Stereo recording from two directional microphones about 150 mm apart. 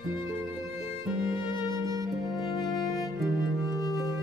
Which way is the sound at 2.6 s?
25° left (ahead or behind).